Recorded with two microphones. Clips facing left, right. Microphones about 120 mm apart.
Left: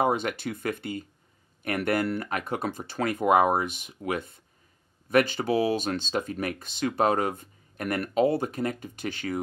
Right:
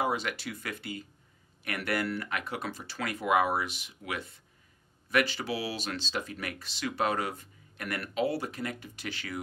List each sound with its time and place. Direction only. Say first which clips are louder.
0.0 s speech: left 6 dB; 50° left (ahead or behind)